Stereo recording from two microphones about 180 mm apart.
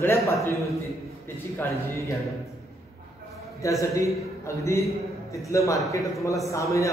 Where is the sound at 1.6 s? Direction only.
15° left (ahead or behind).